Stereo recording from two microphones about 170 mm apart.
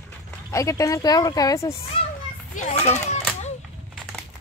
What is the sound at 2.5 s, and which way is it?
Children playing, 50° left (ahead or behind).